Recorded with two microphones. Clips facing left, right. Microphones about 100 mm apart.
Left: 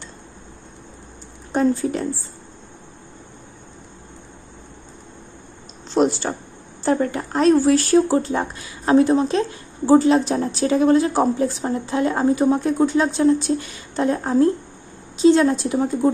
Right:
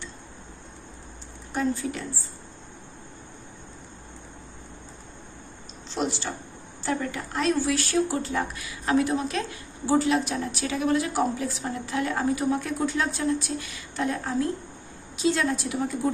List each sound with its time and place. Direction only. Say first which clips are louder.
1.5 s speech: left 8 dB; 40° left (ahead or behind)
6.0 s a sound: left 11 dB; 45° left (ahead or behind)
6.8 s a woman's voice: left 9 dB; 40° left (ahead or behind)